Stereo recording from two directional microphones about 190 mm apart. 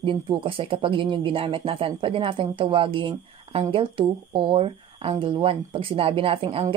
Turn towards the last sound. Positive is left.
turn(degrees=-30)  # may be behind; listen again after turning